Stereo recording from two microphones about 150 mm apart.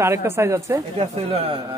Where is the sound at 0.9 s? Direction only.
40° right (ahead or behind).